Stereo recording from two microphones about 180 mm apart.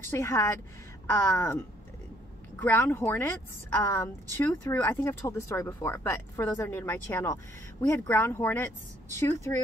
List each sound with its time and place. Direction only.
0.1 s speech: 15° left (ahead or behind)
2.6 s speech: 10° left (ahead or behind)